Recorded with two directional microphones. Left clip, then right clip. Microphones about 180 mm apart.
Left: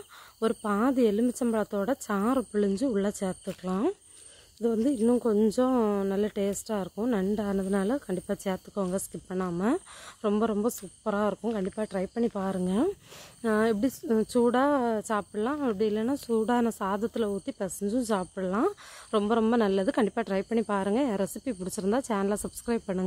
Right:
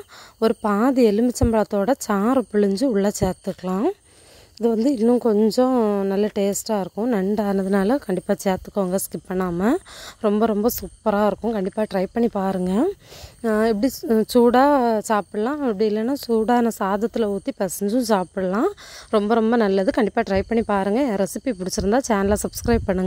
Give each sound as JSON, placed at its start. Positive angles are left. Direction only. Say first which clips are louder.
{"t": 0.4, "sound": "a woman's voice", "louder": "right 8 dB", "side_deg": -40}